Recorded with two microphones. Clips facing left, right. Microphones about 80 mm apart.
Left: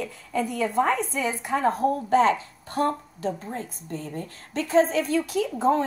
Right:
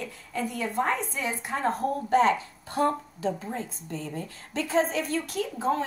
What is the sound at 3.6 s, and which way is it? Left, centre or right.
Speech, left.